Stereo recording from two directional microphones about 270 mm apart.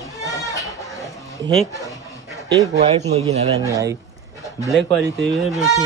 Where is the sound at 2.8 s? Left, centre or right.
Right.